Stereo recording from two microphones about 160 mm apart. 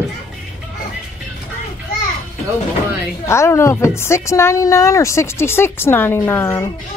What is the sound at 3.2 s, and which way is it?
A woman's voice, 15° left (ahead or behind).